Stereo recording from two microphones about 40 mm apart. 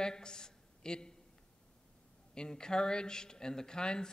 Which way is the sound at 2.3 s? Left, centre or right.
Centre.